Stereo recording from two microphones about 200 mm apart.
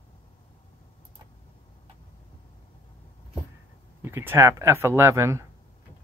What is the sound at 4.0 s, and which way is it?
Speech, 10° right (ahead or behind).